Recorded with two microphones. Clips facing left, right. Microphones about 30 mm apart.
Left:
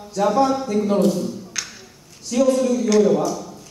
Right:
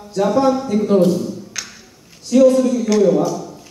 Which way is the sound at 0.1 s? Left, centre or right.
Centre.